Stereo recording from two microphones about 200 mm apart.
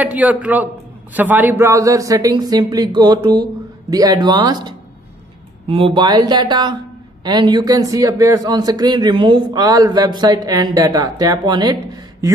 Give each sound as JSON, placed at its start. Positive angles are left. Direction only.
{"t": 0.0, "sound": "a man's voice", "side_deg": -5}